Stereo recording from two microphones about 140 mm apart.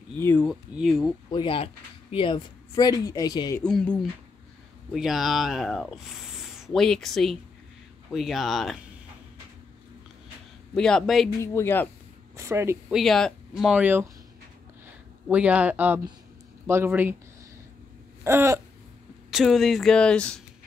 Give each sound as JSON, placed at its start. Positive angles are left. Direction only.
{"t": 0.2, "sound": "speech", "side_deg": 15}
{"t": 0.5, "sound": "speech", "side_deg": 0}
{"t": 1.3, "sound": "speech", "side_deg": 35}
{"t": 2.7, "sound": "speech", "side_deg": 30}
{"t": 3.5, "sound": "speech", "side_deg": 10}
{"t": 10.7, "sound": "speech", "side_deg": 5}
{"t": 11.3, "sound": "speech", "side_deg": 20}
{"t": 12.4, "sound": "speech", "side_deg": -20}
{"t": 12.9, "sound": "speech", "side_deg": 0}
{"t": 15.2, "sound": "speech", "side_deg": -10}
{"t": 18.2, "sound": "a sound", "side_deg": -20}
{"t": 19.3, "sound": "speech", "side_deg": 0}